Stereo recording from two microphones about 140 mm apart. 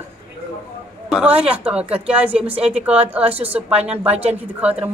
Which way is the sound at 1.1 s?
10° right (ahead or behind).